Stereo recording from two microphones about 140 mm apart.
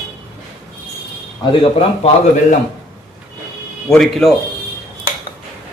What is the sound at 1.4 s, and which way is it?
Speech, 35° left (ahead or behind).